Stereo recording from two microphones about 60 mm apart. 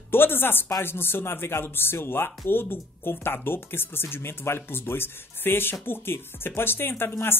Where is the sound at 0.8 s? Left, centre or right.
Left.